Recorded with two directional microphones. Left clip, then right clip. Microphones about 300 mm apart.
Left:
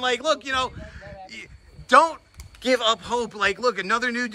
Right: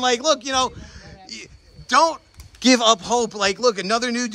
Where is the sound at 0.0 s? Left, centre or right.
Centre.